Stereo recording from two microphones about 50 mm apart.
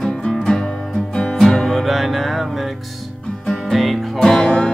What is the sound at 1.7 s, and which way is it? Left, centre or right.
Music, centre.